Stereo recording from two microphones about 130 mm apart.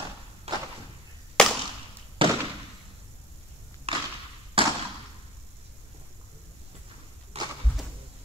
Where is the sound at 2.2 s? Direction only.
40° right (ahead or behind).